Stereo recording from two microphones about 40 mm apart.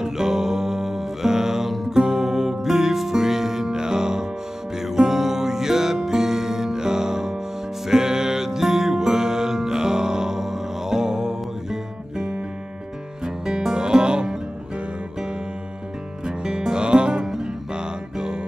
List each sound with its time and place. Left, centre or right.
0.0 s music: centre
16.3 s music: right
17.2 s music: centre